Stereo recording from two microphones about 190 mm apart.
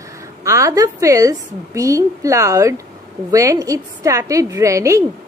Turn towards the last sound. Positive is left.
turn(degrees=-15)  # may be behind; listen again after turning